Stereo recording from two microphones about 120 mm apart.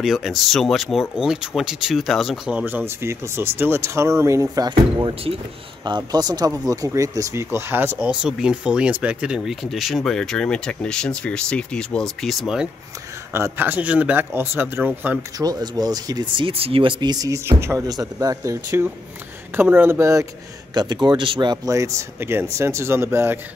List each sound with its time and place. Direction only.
0.0 s speech: centre (ahead or behind)
2.6 s speech: 20° right (ahead or behind)
5.9 s speech: 35° right (ahead or behind); by 8.0 s 20° right (ahead or behind)
8.0 s speech: 5° right (ahead or behind)
13.3 s speech: 20° right (ahead or behind)
15.3 s speech: 35° right (ahead or behind)
19.5 s speech: 15° right (ahead or behind)
20.7 s speech: 35° right (ahead or behind); by 23.4 s 20° right (ahead or behind)